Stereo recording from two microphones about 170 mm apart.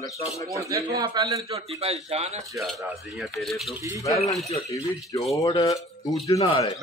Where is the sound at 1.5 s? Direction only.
35° right (ahead or behind).